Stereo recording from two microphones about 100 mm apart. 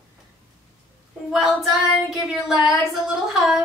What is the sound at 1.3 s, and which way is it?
Speech, centre (ahead or behind).